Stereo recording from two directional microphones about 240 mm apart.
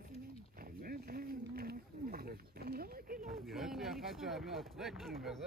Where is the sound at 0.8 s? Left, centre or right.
Right.